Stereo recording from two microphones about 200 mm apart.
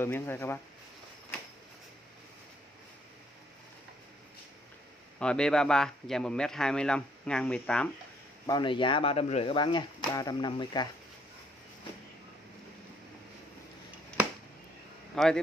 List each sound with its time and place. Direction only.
0.0 s speech: 10° left (ahead or behind)
5.2 s a man's voice: 5° left (ahead or behind)
8.5 s speech: 25° left (ahead or behind)
15.1 s a man's voice: 5° left (ahead or behind)